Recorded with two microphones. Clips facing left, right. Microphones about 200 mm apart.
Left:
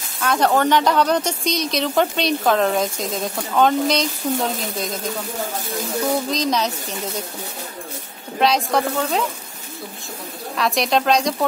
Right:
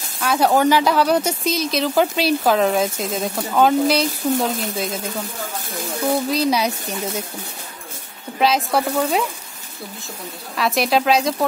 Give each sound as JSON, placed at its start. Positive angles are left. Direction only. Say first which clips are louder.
{"t": 0.2, "sound": "speech", "louder": "right 1 dB", "side_deg": -5}
{"t": 6.3, "sound": "speech", "louder": "right 2 dB", "side_deg": -10}
{"t": 8.4, "sound": "speech", "louder": "even", "side_deg": 0}
{"t": 10.5, "sound": "speech", "louder": "right 1 dB", "side_deg": 0}